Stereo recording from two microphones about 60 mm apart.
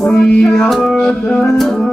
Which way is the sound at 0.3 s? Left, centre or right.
Centre.